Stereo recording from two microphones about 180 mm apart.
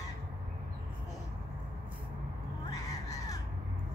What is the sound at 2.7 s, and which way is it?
Crow, 20° left (ahead or behind).